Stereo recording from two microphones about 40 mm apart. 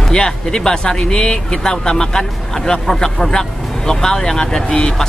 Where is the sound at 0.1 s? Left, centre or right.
Centre.